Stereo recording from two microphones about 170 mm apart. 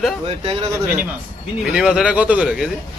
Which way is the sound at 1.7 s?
5° right (ahead or behind).